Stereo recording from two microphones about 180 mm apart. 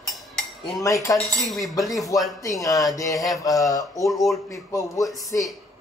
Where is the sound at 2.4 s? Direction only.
20° left (ahead or behind).